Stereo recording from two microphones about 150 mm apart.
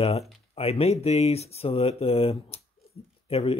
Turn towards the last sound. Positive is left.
turn(degrees=40)  # may be behind; listen again after turning